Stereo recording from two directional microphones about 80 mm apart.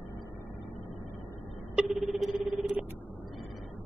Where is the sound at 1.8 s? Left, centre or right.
Centre.